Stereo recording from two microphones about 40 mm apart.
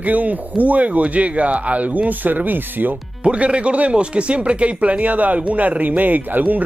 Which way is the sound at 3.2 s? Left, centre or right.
Right.